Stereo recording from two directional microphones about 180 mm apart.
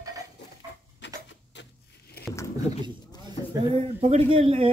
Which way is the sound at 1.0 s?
80° left.